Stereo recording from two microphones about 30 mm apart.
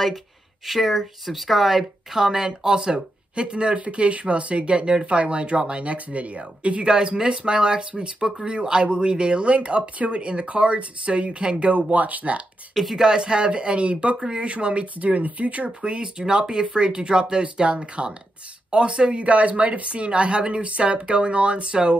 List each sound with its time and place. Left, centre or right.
0.7 s a woman's voice: centre
2.1 s speech: centre; by 11.8 s right
11.9 s speech: right
12.9 s speech: right
15.8 s speech: right
20.1 s speech: right